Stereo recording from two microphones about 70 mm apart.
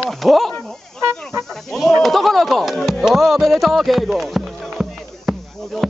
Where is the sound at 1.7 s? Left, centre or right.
Centre.